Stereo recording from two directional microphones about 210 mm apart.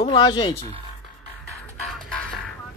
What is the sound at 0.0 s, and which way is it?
Speech, 20° left (ahead or behind).